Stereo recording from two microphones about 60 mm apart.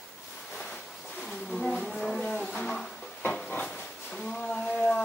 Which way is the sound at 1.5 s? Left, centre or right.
Centre.